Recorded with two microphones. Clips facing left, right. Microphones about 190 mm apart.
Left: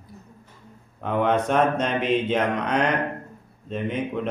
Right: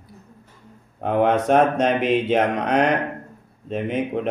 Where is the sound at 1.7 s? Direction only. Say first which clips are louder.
Right 4 dB; 75° right (ahead or behind).